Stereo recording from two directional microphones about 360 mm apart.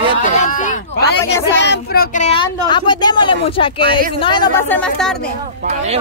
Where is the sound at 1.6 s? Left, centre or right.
Left; by 5.1 s centre.